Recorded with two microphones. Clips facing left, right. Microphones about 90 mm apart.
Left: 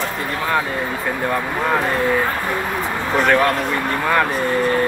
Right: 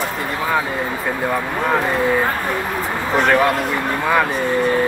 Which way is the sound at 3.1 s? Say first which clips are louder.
Even; centre (ahead or behind).